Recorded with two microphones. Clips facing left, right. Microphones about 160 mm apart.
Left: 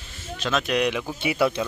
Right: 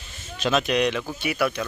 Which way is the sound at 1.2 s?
25° left (ahead or behind).